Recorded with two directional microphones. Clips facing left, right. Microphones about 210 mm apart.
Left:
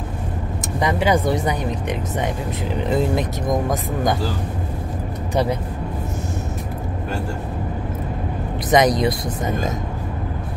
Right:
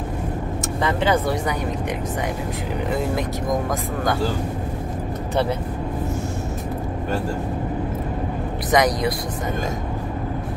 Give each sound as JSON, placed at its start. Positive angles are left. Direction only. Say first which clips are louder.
{"t": 0.7, "sound": "speech", "louder": "left 2 dB", "side_deg": 15}
{"t": 8.6, "sound": "speech", "louder": "left 3 dB", "side_deg": 20}